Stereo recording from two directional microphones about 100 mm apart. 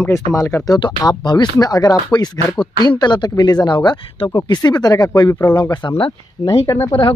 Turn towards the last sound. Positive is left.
turn(degrees=35)  # may be behind; listen again after turning